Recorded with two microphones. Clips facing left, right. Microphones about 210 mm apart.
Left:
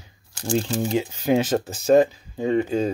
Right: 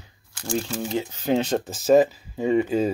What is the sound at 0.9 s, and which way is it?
Speech, 10° left (ahead or behind).